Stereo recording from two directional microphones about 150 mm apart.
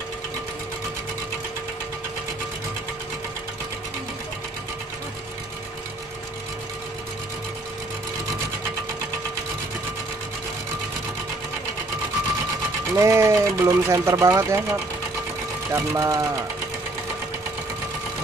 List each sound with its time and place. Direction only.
12.9 s speech: 20° right (ahead or behind)